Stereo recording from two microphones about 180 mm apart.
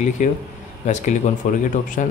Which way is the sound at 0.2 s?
45° left (ahead or behind).